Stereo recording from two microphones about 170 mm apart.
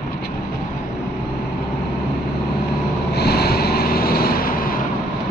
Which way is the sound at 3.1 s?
70° left (ahead or behind).